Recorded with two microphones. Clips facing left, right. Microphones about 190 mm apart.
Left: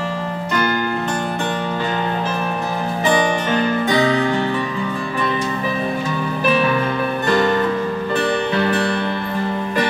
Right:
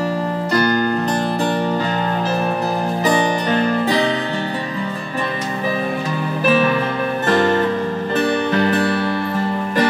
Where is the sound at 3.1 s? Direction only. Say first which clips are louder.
Left 1 dB; 35° right (ahead or behind).